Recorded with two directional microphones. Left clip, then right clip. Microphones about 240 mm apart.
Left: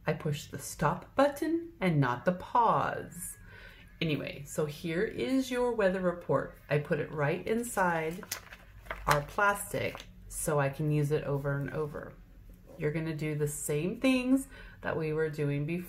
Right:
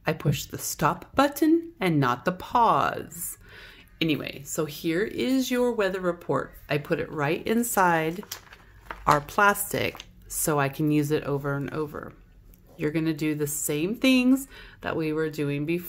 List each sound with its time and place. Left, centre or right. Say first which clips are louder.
0.0 s speech: right 6 dB; right